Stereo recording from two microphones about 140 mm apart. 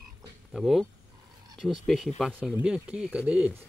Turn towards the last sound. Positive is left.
turn(degrees=-10)  # may be behind; listen again after turning